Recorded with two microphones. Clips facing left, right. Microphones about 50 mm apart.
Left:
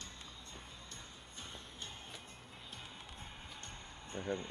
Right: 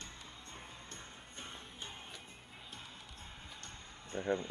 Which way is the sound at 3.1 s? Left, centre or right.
Left.